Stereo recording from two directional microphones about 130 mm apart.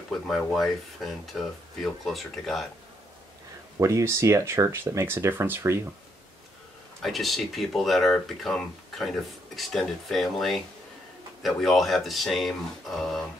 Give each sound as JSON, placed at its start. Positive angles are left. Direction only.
{"t": 0.5, "sound": "speech", "side_deg": 0}
{"t": 3.8, "sound": "speech", "side_deg": -25}
{"t": 7.0, "sound": "speech", "side_deg": 0}